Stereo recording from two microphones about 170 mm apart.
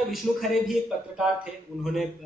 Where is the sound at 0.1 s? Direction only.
Centre (ahead or behind).